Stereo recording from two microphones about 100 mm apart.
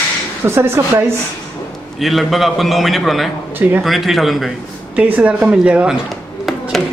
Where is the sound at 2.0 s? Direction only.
Centre (ahead or behind).